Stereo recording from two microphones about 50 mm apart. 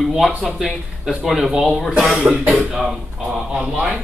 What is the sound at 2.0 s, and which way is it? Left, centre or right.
Speech, centre.